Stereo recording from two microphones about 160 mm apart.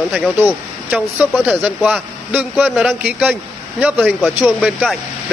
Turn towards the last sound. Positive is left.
turn(degrees=0)  # may be behind; listen again after turning